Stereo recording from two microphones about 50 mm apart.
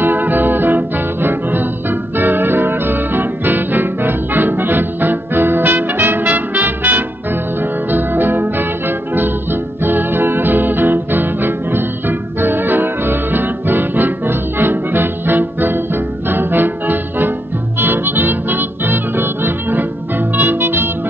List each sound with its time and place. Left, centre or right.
0.0 s music: right